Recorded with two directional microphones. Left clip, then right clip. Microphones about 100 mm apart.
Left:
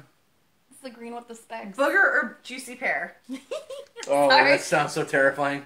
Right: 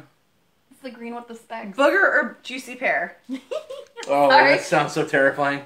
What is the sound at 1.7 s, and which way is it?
A woman's voice, 45° right (ahead or behind).